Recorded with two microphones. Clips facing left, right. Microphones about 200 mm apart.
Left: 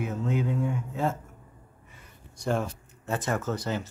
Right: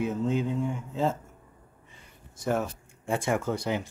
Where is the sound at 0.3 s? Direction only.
25° right (ahead or behind).